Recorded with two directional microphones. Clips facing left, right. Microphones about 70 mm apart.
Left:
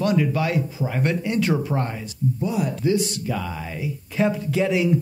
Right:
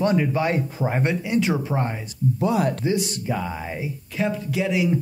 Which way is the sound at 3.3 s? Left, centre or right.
Right.